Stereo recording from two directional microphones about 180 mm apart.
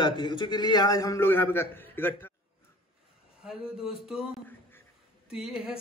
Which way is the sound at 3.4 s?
5° right (ahead or behind).